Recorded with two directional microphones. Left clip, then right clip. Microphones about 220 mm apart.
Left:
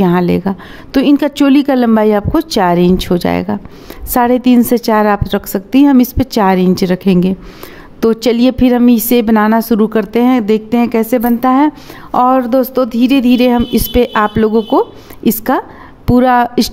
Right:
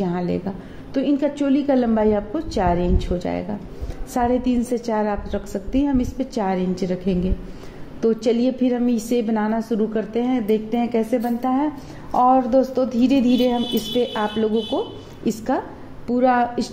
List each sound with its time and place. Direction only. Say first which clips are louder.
0.0 s a woman's voice: left 12 dB; 35° left (ahead or behind)